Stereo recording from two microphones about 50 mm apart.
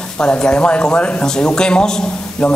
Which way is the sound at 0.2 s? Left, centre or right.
Centre.